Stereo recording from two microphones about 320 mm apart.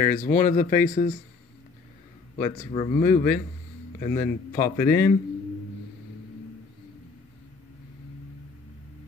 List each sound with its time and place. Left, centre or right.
0.0 s speech: left
2.3 s speech: left
4.1 s a man's voice: centre